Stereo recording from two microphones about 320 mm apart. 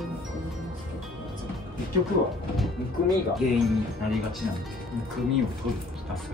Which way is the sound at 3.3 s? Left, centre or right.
Centre.